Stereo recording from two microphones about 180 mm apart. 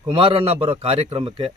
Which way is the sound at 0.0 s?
30° right (ahead or behind).